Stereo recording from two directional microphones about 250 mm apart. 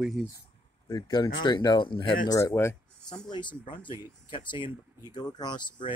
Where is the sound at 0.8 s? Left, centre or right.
Centre.